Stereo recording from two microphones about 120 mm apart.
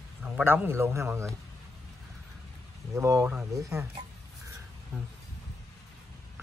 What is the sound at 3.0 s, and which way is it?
Speech, 25° right (ahead or behind).